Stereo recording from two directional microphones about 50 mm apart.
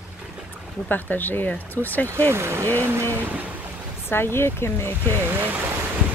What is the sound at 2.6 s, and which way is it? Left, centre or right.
Speech, left.